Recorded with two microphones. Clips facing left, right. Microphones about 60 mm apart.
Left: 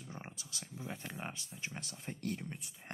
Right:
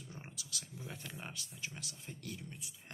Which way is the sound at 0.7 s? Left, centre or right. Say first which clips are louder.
Left 5 dB; left.